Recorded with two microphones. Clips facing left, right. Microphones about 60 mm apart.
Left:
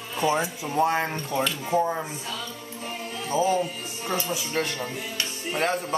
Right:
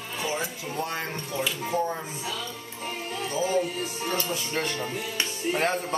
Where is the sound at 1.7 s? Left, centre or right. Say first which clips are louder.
Left 5 dB; centre.